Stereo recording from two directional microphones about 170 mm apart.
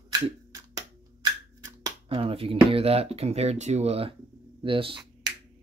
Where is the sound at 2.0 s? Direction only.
35° right (ahead or behind).